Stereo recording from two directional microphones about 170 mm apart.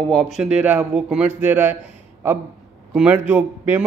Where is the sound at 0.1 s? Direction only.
Centre (ahead or behind).